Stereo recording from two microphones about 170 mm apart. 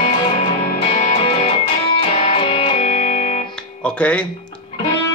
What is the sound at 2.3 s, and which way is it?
Music, 30° left (ahead or behind).